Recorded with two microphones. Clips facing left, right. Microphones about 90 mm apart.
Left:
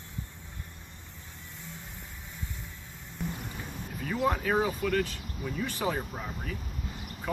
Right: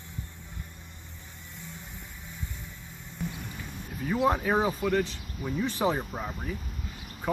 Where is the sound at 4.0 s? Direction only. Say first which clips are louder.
Right 3 dB; 15° right (ahead or behind).